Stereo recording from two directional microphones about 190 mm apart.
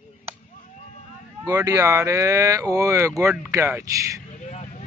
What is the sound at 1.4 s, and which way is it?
Speech, 15° right (ahead or behind).